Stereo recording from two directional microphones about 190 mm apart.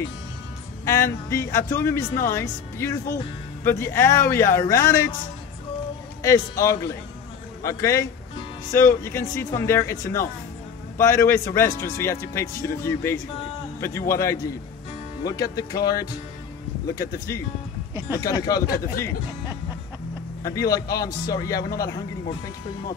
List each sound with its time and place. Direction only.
0.8 s a man's voice: 15° left (ahead or behind)
6.2 s a man's voice: 15° left (ahead or behind)
20.4 s a man's voice: 20° left (ahead or behind)